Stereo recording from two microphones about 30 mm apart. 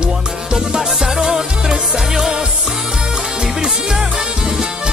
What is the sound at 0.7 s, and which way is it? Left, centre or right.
Music, centre.